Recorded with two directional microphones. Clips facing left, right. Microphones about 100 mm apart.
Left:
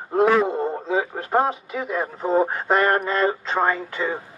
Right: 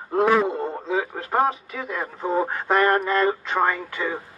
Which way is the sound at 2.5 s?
25° left (ahead or behind).